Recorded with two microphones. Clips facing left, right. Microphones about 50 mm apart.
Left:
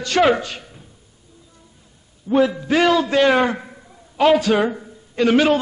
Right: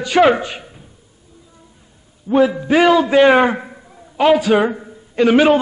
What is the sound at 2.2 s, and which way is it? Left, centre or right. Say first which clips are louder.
A man's voice: right 3 dB; centre.